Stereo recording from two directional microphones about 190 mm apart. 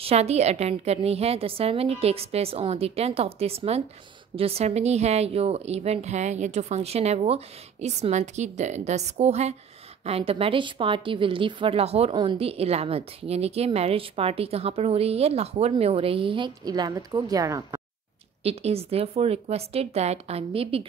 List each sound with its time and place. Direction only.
0.0 s a woman's voice: 35° right (ahead or behind); by 17.8 s 20° right (ahead or behind)
18.4 s a woman's voice: 30° right (ahead or behind)